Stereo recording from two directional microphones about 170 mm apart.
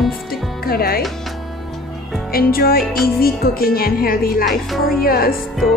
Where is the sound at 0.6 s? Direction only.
60° left (ahead or behind).